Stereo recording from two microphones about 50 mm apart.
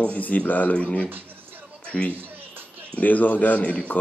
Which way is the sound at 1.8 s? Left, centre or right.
Left.